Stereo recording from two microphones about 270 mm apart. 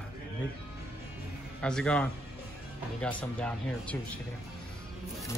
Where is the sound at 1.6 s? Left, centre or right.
Centre.